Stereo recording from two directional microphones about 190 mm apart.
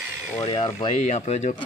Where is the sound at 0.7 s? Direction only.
30° left (ahead or behind).